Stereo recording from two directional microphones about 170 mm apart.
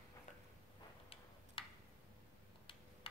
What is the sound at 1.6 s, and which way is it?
Tick-tock, 30° left (ahead or behind).